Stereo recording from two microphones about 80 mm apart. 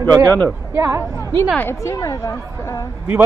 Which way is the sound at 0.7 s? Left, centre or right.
Right.